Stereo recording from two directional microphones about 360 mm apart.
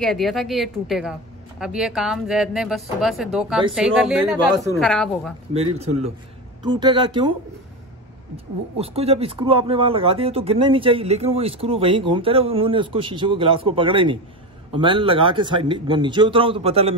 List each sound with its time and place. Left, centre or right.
0.0 s speech: centre
5.5 s speech: centre
8.7 s speech: centre